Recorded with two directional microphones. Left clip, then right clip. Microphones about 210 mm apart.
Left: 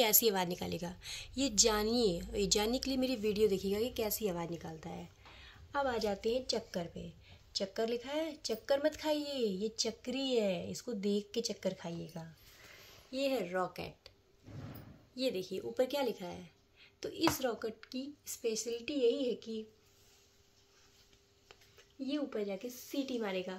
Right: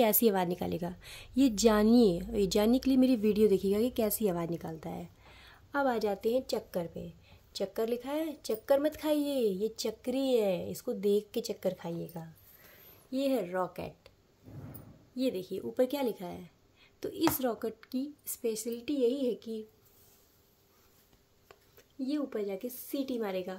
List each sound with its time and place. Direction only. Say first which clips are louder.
0.0 s a woman's voice: right 4 dB; 45° right (ahead or behind)
15.1 s a woman's voice: right 3 dB; 55° right (ahead or behind)
22.0 s a woman's voice: right 3 dB; 60° right (ahead or behind)